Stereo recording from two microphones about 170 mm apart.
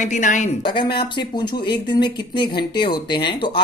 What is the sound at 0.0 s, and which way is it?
Speech, 45° left (ahead or behind).